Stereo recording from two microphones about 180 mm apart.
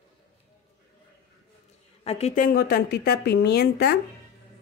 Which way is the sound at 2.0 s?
35° left (ahead or behind).